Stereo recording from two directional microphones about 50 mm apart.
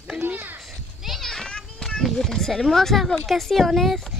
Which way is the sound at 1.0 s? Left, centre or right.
Centre.